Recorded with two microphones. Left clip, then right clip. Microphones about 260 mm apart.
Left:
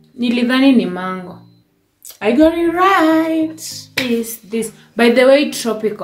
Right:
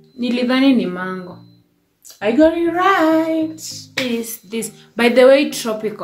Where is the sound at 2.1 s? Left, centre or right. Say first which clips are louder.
Left 1 dB; centre.